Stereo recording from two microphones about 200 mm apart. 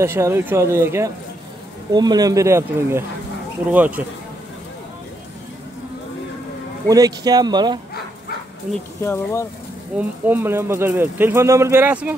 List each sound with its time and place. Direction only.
0.0 s speech: 15° right (ahead or behind)
6.9 s speech: 20° right (ahead or behind)
9.0 s speech: 15° left (ahead or behind)
9.9 s speech: 10° right (ahead or behind)